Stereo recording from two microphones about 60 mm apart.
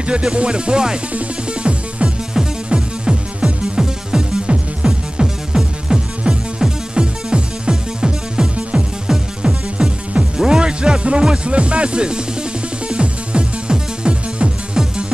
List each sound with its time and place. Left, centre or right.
0.0 s music: centre